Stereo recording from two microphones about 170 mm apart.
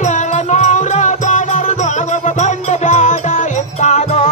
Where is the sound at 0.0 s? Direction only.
45° left (ahead or behind).